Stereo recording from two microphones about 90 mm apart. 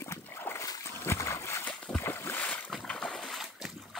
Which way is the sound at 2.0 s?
25° left (ahead or behind).